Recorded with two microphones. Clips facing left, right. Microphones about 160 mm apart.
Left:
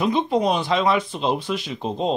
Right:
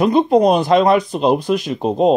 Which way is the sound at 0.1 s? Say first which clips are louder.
Right 8 dB; 40° right (ahead or behind).